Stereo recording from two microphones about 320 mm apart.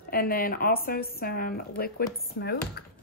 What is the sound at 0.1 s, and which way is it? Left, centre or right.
Speech, left.